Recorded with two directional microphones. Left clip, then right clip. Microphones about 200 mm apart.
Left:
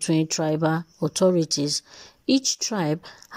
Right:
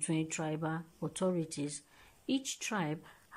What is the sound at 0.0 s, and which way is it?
Speech, 30° left (ahead or behind).